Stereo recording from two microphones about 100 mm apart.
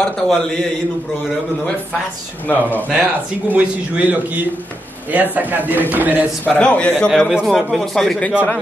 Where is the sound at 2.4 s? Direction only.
20° left (ahead or behind).